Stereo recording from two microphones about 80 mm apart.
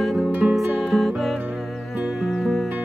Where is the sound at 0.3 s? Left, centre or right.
Centre.